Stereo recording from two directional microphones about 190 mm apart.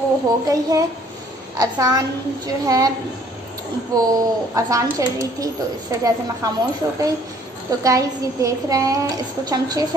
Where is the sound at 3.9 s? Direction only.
20° right (ahead or behind).